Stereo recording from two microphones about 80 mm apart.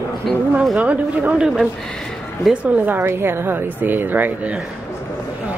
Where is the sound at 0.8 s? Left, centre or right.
Centre.